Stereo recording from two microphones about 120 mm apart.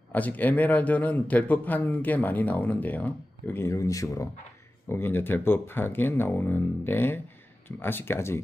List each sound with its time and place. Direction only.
0.1 s a man's voice: 15° left (ahead or behind)
4.8 s a man's voice: 20° left (ahead or behind)